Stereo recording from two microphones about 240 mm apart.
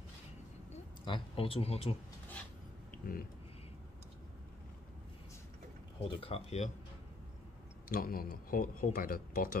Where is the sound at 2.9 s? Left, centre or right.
Left.